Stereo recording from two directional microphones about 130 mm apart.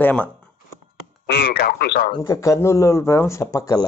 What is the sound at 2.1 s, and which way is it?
Speech, 25° left (ahead or behind).